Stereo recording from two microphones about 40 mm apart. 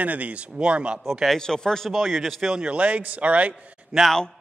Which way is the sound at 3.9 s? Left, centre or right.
Centre.